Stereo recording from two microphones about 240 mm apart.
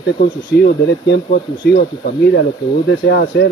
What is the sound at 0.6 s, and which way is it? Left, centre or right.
Speech, left.